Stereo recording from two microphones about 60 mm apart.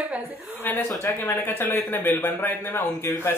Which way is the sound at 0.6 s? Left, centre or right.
Left.